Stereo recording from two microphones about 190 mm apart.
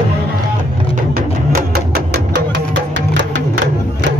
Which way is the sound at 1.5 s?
50° right (ahead or behind).